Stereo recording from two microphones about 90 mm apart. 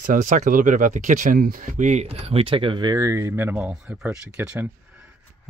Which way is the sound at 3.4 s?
25° right (ahead or behind).